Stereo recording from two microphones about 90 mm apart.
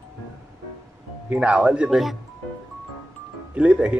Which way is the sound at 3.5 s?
15° right (ahead or behind).